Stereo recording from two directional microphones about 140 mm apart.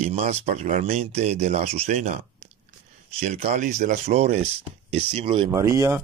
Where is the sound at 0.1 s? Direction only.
50° right (ahead or behind).